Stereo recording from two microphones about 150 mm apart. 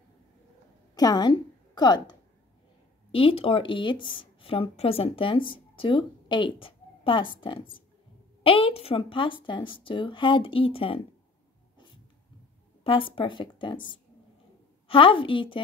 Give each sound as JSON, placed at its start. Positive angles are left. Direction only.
{"t": 0.9, "sound": "a woman's voice", "side_deg": 25}
{"t": 12.8, "sound": "speech", "side_deg": 35}
{"t": 14.9, "sound": "speech", "side_deg": 35}